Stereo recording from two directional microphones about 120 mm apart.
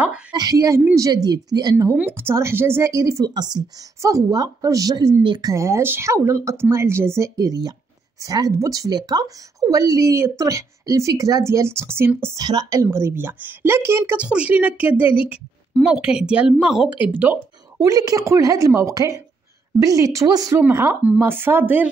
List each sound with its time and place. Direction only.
0.3 s speech: 35° right (ahead or behind)
2.0 s a woman's voice: 15° right (ahead or behind)
12.4 s speech: 35° right (ahead or behind)
12.8 s speech: 20° right (ahead or behind)
17.7 s a woman's voice: 30° right (ahead or behind)
20.6 s speech: 20° right (ahead or behind)